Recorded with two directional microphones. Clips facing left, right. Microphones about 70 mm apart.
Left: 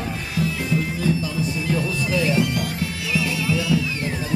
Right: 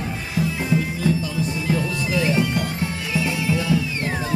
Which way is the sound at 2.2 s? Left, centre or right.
Right.